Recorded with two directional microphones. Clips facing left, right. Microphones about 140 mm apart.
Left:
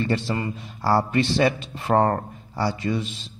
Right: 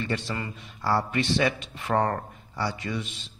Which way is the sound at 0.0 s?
30° left (ahead or behind).